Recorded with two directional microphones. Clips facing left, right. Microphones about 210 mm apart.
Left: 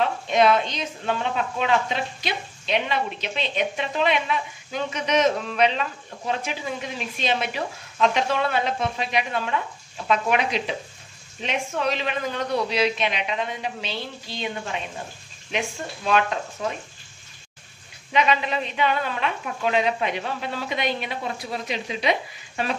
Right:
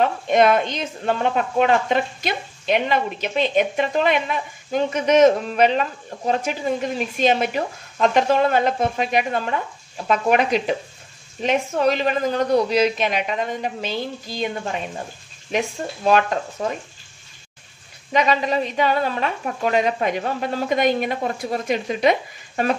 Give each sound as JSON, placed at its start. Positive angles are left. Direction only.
{"t": 0.0, "sound": "a woman's voice", "side_deg": -50}
{"t": 18.1, "sound": "a woman's voice", "side_deg": -40}